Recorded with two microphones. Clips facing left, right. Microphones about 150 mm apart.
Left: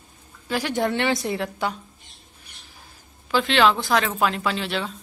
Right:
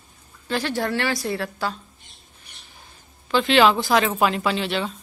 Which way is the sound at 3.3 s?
Centre (ahead or behind).